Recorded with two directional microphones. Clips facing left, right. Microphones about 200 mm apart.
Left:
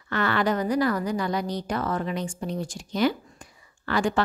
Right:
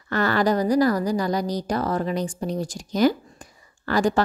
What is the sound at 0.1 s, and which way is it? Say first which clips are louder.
A woman's voice: right 3 dB; 40° right (ahead or behind).